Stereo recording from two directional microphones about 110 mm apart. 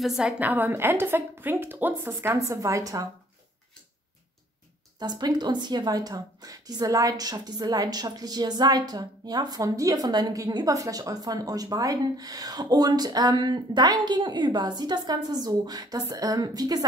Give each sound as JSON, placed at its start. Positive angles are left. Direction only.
{"t": 0.0, "sound": "a woman's voice", "side_deg": -5}
{"t": 0.4, "sound": "a woman's voice", "side_deg": -15}
{"t": 4.9, "sound": "a woman's voice", "side_deg": -40}